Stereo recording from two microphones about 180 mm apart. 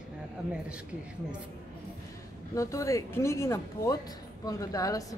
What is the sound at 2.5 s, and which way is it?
Speech, 15° left (ahead or behind).